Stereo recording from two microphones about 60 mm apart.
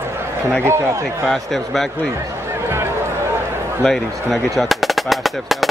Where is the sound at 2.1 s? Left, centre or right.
Right.